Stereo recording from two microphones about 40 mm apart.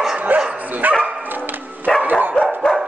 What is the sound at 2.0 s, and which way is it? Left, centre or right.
Dog, right.